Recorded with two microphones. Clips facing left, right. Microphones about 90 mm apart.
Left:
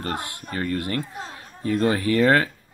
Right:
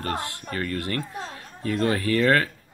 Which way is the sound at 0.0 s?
20° left (ahead or behind).